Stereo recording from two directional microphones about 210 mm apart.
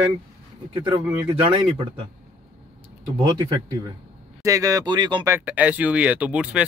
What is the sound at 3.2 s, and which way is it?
Speech, 20° right (ahead or behind).